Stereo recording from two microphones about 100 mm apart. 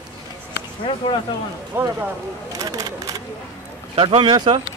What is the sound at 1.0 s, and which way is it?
Speech, 50° left (ahead or behind).